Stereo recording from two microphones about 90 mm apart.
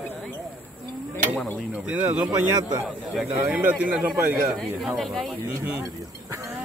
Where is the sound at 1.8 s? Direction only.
15° right (ahead or behind).